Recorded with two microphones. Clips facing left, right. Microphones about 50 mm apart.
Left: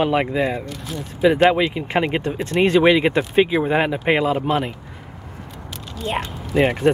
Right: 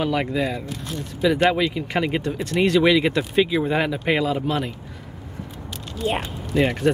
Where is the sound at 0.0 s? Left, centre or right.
Left.